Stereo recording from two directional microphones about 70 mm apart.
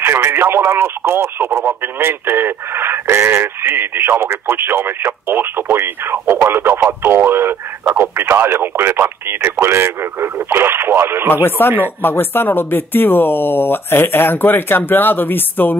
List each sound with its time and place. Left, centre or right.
0.0 s speech: right
11.4 s speech: left